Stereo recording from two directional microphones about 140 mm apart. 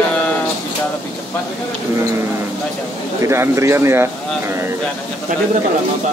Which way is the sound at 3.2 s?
20° right (ahead or behind).